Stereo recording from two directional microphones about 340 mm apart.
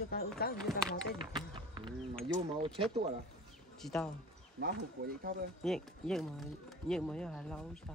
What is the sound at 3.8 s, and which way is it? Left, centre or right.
Speech, centre.